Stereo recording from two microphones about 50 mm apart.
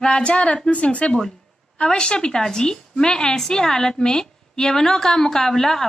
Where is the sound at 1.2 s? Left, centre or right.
Centre.